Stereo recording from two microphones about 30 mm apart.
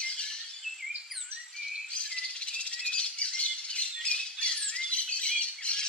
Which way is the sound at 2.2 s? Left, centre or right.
Left.